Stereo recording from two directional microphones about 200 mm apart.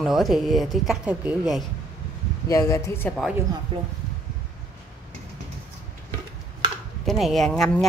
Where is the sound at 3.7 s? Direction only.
25° right (ahead or behind).